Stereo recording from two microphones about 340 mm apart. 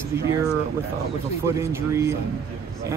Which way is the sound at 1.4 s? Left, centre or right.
Centre.